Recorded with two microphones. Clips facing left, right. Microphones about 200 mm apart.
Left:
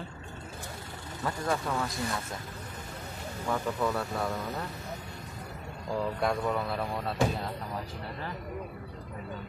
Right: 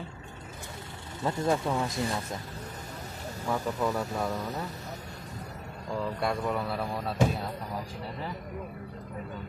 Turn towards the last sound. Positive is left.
turn(degrees=-5)  # may be behind; listen again after turning